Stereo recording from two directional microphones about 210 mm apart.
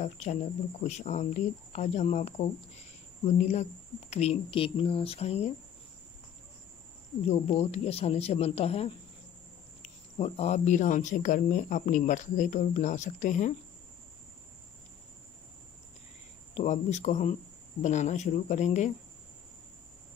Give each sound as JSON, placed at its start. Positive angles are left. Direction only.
{"t": 0.0, "sound": "speech", "side_deg": 35}
{"t": 7.2, "sound": "speech", "side_deg": 30}
{"t": 10.1, "sound": "speech", "side_deg": 30}
{"t": 16.5, "sound": "speech", "side_deg": 35}